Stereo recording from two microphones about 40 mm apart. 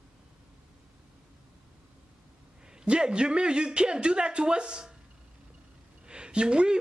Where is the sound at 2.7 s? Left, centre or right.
Right.